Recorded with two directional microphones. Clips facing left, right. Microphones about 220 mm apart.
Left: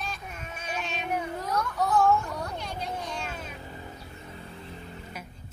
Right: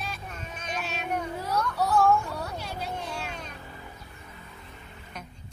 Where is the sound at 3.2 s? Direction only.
5° left (ahead or behind).